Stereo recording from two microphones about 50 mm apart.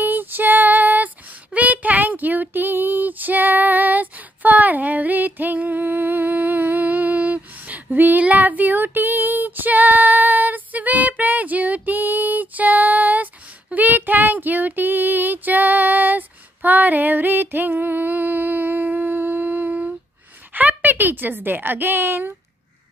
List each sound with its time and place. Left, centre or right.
0.0 s female singing: right
20.5 s a woman's voice: right